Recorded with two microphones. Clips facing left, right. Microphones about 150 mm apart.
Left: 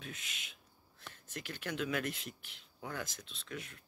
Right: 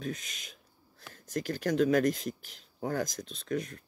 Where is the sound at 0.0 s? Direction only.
40° right (ahead or behind).